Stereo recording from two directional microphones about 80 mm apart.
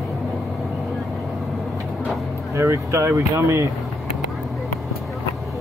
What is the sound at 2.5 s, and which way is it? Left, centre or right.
Speech, right.